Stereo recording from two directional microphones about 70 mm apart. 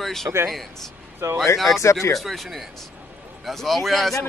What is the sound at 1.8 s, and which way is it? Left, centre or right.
Speech, left.